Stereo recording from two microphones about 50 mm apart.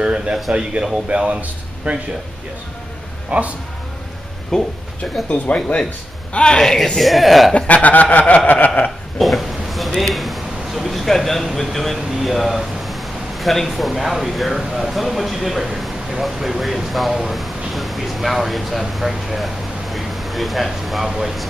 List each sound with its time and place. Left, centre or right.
0.0 s speech: right
3.3 s speech: right
4.5 s a man's voice: centre
6.3 s a man's voice: centre
7.5 s chuckle: left
9.2 s speech: centre